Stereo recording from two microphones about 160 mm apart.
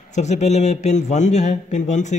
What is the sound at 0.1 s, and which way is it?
A man's voice, 45° left (ahead or behind).